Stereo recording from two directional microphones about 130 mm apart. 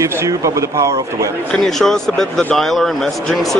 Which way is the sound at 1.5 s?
5° left (ahead or behind).